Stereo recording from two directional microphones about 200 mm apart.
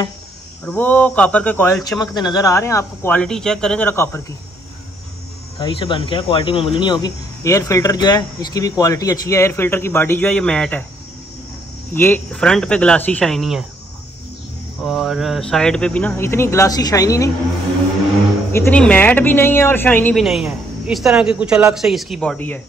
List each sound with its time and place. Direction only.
0.7 s speech: 10° left (ahead or behind)
5.6 s speech: 25° left (ahead or behind); by 10.9 s 5° left (ahead or behind)
11.9 s speech: 10° left (ahead or behind)
14.8 s speech: centre (ahead or behind); by 17.3 s 15° left (ahead or behind)
18.5 s speech: 10° left (ahead or behind)